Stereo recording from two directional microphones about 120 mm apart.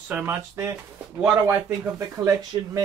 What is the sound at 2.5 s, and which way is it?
Speech, 40° right (ahead or behind).